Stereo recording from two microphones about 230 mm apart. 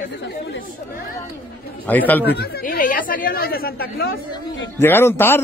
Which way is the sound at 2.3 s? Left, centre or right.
Left.